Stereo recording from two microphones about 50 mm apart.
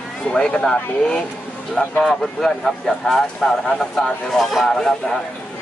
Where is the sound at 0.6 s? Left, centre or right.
Centre.